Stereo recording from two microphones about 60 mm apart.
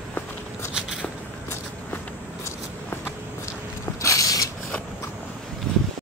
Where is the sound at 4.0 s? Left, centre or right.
Left.